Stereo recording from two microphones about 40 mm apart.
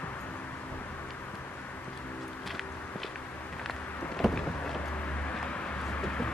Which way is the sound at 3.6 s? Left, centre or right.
Centre.